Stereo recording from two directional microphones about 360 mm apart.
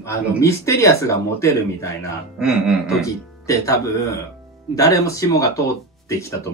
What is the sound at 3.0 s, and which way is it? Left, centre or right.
A man's voice, centre.